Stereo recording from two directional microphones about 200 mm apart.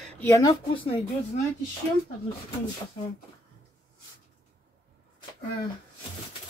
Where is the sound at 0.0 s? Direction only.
10° left (ahead or behind).